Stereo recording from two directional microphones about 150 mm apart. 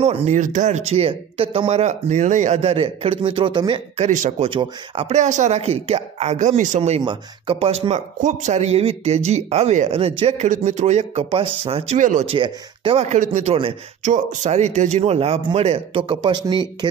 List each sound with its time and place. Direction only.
0.0 s a man's voice: 45° right (ahead or behind)
4.0 s a man's voice: 50° right (ahead or behind)
4.5 s a man's voice: 35° right (ahead or behind)
7.1 s a man's voice: 40° right (ahead or behind)
12.0 s speech: 55° right (ahead or behind)
12.3 s a man's voice: 35° right (ahead or behind)
14.0 s a man's voice: 50° right (ahead or behind); by 16.6 s 30° right (ahead or behind)